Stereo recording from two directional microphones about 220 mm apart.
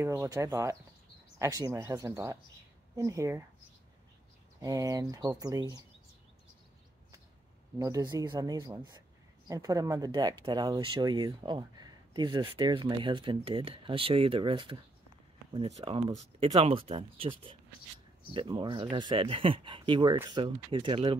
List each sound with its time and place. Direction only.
0.0 s speech: 15° right (ahead or behind)
4.6 s speech: 15° right (ahead or behind)
7.8 s speech: 15° right (ahead or behind)